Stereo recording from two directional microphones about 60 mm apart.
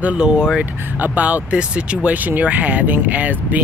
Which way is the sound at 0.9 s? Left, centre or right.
Right.